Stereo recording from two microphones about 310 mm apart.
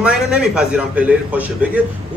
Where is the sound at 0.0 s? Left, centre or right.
Centre.